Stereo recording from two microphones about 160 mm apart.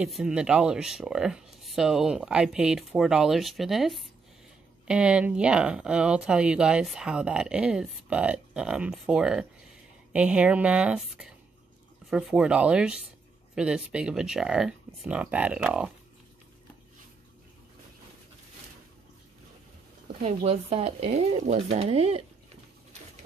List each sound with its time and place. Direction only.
0.0 s a woman's voice: 5° right (ahead or behind)
20.1 s speech: 35° right (ahead or behind)